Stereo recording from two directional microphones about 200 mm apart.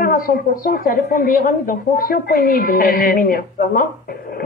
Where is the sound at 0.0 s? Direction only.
45° left (ahead or behind).